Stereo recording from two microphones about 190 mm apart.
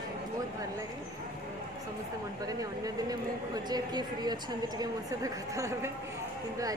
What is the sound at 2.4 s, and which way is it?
A woman's voice, 20° right (ahead or behind).